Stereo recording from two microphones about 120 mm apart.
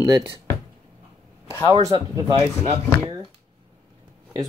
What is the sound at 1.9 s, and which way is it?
Speech, 30° right (ahead or behind).